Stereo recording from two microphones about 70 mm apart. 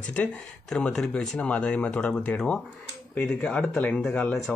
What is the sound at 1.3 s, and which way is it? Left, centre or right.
Speech, left.